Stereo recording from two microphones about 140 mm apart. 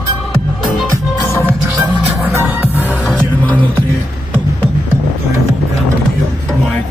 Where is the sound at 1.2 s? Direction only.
20° left (ahead or behind).